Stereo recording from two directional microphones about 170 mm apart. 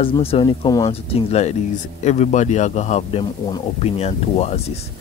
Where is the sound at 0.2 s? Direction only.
30° left (ahead or behind).